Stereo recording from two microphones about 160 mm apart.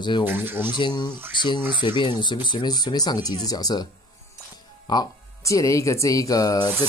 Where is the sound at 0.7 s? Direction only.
25° left (ahead or behind).